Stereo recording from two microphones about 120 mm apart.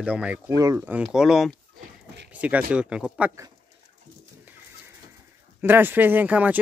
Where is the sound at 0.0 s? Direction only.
10° right (ahead or behind).